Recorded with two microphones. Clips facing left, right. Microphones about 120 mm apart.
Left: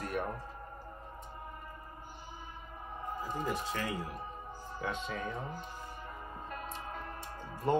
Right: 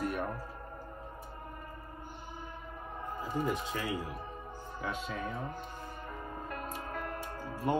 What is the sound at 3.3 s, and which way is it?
Speech, 10° right (ahead or behind).